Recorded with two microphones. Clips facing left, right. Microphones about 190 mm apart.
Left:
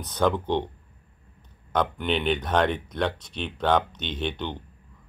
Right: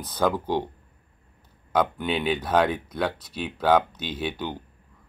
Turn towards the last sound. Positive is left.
turn(degrees=-5)  # may be behind; listen again after turning